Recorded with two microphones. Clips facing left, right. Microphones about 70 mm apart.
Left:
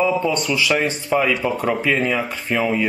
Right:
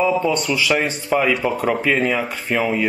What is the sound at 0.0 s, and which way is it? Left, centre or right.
Speech, centre.